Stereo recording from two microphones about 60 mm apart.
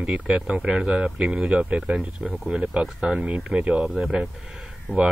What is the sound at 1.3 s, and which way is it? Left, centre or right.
Speech, right.